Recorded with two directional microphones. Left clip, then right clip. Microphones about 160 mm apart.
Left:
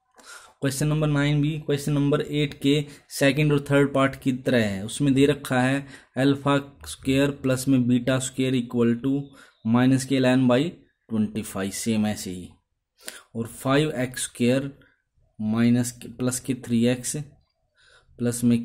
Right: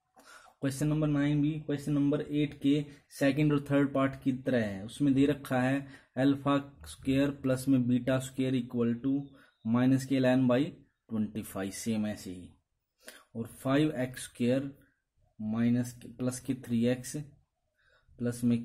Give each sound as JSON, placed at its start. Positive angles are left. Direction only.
{"t": 0.2, "sound": "speech", "side_deg": 10}